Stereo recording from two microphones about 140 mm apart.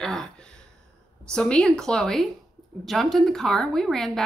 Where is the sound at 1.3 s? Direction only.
5° left (ahead or behind).